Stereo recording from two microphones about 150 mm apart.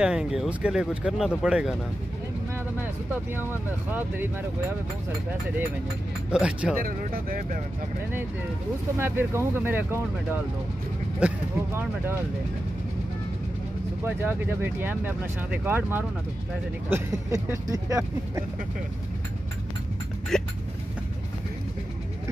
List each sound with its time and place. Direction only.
0.0 s speech: 5° right (ahead or behind)
2.8 s speech: 15° right (ahead or behind)
6.3 s speech: 5° right (ahead or behind)
6.8 s speech: 70° right (ahead or behind)
8.9 s speech: 15° right (ahead or behind)
11.1 s speech: 10° right (ahead or behind)
14.0 s speech: 15° right (ahead or behind)
20.3 s speech: 5° left (ahead or behind)